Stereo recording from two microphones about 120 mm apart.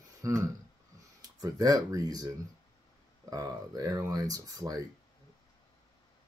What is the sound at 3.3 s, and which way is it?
Speech, 30° right (ahead or behind).